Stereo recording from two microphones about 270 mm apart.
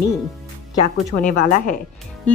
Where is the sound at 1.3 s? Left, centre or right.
Left.